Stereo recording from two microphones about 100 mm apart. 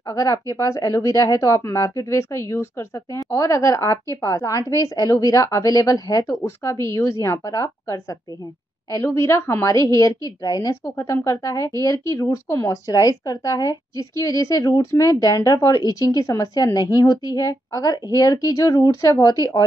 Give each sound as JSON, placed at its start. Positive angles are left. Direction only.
{"t": 0.1, "sound": "a woman's voice", "side_deg": 35}